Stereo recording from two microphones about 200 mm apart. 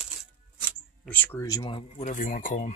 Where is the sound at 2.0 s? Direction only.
45° left (ahead or behind).